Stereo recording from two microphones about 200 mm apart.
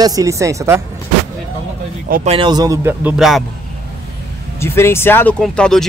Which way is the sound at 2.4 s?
20° right (ahead or behind).